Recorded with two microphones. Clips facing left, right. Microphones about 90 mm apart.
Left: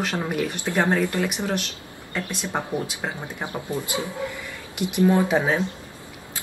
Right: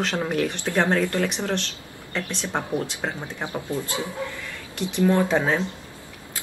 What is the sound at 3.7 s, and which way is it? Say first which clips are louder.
Speech: left 2 dB; 20° left (ahead or behind).